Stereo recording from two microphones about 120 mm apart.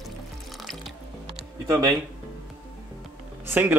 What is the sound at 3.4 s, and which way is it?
Speech, 15° right (ahead or behind).